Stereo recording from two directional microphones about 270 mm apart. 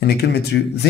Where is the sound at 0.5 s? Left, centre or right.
Left.